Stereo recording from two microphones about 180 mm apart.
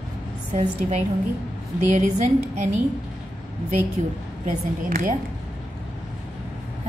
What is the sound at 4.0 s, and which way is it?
A woman's voice, 40° right (ahead or behind).